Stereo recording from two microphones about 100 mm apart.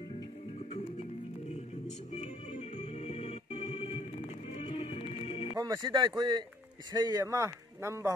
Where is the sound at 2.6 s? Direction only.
90° left.